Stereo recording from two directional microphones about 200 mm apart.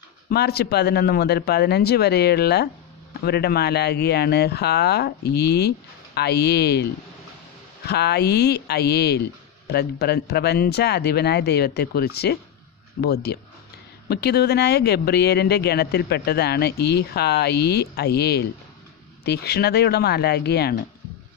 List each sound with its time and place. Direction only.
0.3 s speech: 55° left (ahead or behind)